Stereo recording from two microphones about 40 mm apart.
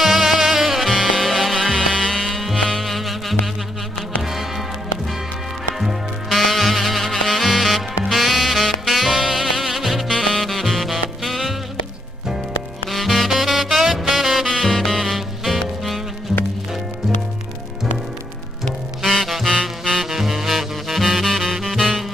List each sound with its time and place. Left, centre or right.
0.0 s music: centre
0.9 s music: centre
2.5 s music: centre
2.8 s music: centre
5.8 s music: centre
10.1 s saxophone: centre
10.4 s saxophone: centre
12.9 s saxophone: centre
14.6 s music: centre
19.1 s music: centre
21.3 s saxophone: centre
21.5 s music: centre